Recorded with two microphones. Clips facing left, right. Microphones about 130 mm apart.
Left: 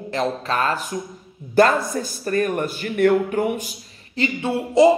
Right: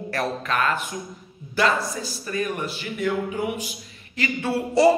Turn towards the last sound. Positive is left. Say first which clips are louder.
# left 3 dB
turn(degrees=20)  # may be behind; listen again after turning